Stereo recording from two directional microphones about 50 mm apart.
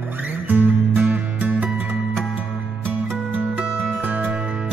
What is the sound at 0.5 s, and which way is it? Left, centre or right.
Music, right.